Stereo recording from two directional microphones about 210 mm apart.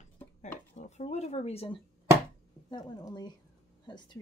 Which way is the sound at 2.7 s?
20° left (ahead or behind).